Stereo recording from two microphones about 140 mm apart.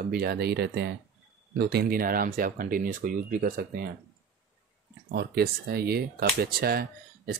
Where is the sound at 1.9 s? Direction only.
90° right.